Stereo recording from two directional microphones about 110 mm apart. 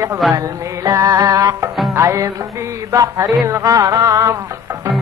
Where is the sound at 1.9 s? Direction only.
25° right (ahead or behind).